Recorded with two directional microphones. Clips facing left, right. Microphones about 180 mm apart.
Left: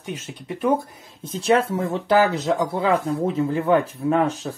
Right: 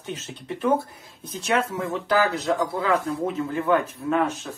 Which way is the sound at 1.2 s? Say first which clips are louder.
Left 5 dB; 30° left (ahead or behind).